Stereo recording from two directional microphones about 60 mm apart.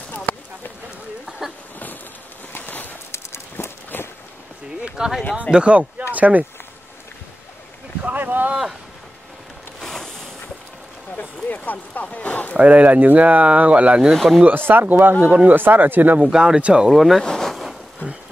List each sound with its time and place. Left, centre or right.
0.3 s clip-clop: left
1.4 s boat: centre
2.5 s a sound: left
4.8 s a sound: centre
5.5 s speech: centre
8.0 s boat: right
9.8 s a sound: centre
11.1 s speech: left
12.5 s speech: right
14.1 s speech: centre
14.7 s speech: right
16.2 s speech: centre
16.9 s speech: centre
17.2 s zipper: centre